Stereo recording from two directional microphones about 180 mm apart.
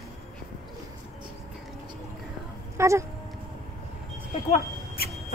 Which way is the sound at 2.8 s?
15° right (ahead or behind).